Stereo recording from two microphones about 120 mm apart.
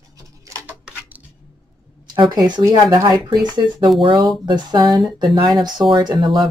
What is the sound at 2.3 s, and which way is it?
Speech, 30° right (ahead or behind).